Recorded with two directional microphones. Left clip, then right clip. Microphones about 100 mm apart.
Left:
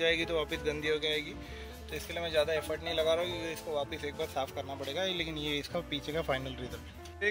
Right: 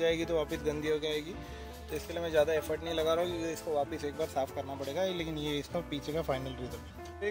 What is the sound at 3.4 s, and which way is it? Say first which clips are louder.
A man's voice: right 2 dB; 90° right.